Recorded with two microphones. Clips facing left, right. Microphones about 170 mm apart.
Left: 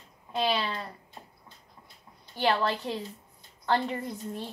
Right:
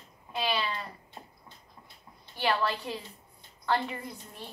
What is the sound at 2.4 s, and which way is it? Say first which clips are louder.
A woman's voice: left 2 dB; 45° left (ahead or behind).